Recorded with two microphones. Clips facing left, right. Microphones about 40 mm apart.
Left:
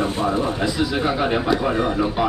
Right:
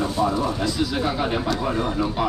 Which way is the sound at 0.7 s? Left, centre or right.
Centre.